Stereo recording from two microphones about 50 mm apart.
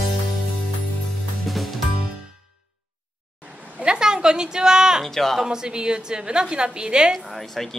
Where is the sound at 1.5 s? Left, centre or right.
Centre.